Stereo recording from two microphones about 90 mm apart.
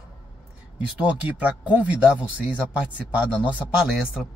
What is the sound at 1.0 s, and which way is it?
A man's voice, 15° right (ahead or behind).